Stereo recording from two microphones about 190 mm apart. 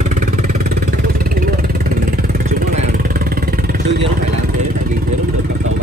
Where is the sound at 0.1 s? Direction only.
45° right (ahead or behind).